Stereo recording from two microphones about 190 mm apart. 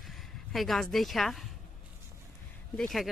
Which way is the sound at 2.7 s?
Centre (ahead or behind).